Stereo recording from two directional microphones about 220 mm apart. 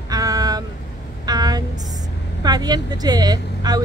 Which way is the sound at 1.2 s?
20° right (ahead or behind).